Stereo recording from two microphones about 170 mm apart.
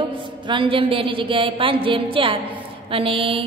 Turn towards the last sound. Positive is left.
turn(degrees=-30)  # may be behind; listen again after turning